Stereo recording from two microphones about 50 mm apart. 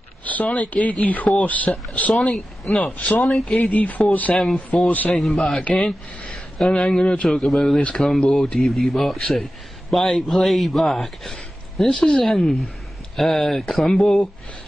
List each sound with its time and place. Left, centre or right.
0.2 s speech: left
2.1 s a man's voice: centre
3.7 s speech: left
4.4 s a man's voice: centre
4.8 s speech: left
5.1 s a man's voice: centre
6.8 s a man's voice: centre
7.2 s a man's voice: centre